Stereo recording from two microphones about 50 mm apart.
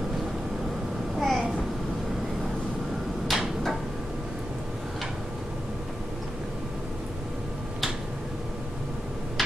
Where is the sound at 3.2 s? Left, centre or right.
Centre.